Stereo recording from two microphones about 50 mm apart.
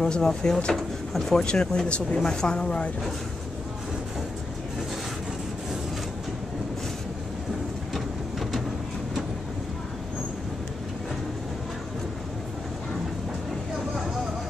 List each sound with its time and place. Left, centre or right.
0.0 s speech: centre
0.7 s drawer open or close: centre
1.4 s speech: centre
7.9 s a sound: centre